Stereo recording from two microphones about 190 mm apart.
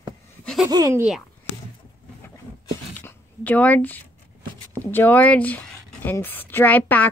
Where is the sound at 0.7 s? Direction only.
20° right (ahead or behind).